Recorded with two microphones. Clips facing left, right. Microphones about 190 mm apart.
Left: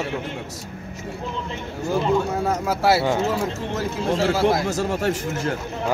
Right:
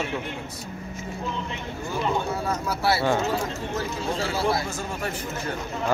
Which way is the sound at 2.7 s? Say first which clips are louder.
Left 5 dB; 90° left.